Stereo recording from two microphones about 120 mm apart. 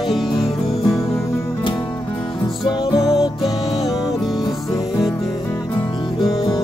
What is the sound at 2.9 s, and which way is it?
Music, 5° right (ahead or behind).